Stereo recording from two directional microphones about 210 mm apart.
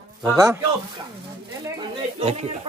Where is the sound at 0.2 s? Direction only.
15° right (ahead or behind).